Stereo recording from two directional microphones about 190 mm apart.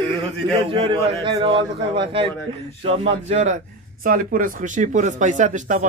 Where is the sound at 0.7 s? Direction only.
25° right (ahead or behind).